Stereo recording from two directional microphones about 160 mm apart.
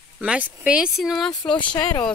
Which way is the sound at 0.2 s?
5° right (ahead or behind).